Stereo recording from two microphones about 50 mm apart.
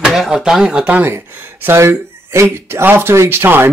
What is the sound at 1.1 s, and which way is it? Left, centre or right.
Speech, right.